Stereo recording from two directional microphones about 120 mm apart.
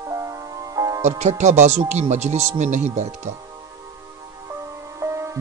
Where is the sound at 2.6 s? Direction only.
85° right.